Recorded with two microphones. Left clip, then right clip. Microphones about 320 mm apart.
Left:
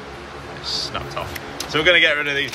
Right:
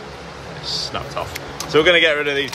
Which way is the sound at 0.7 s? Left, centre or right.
Centre.